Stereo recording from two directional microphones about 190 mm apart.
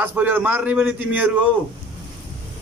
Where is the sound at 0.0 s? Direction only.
10° right (ahead or behind).